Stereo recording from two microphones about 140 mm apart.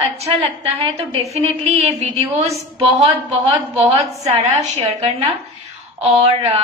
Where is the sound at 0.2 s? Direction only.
45° right (ahead or behind).